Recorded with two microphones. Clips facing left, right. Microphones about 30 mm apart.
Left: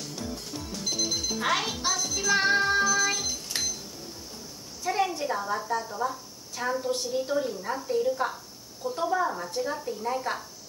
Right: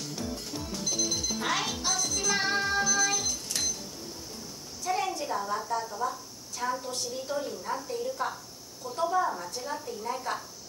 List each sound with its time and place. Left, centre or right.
0.0 s music: centre
4.8 s a sound: centre
5.7 s a woman's voice: centre